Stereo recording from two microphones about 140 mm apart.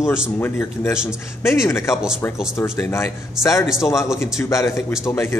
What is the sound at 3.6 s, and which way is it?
Speech, 5° right (ahead or behind).